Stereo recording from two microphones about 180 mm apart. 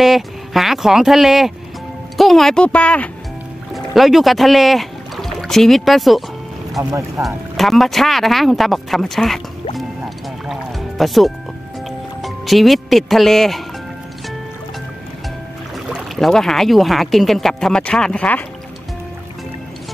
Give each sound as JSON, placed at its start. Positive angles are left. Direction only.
{"t": 0.0, "sound": "speech", "side_deg": 0}
{"t": 6.8, "sound": "speech", "side_deg": -15}
{"t": 7.2, "sound": "speech", "side_deg": 0}
{"t": 9.8, "sound": "music", "side_deg": 0}
{"t": 12.2, "sound": "speech", "side_deg": 0}
{"t": 15.9, "sound": "speech", "side_deg": 0}